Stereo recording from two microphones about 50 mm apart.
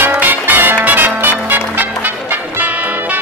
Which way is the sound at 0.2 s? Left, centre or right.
Right.